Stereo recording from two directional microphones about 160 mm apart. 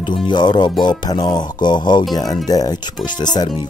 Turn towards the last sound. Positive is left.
turn(degrees=25)  # may be behind; listen again after turning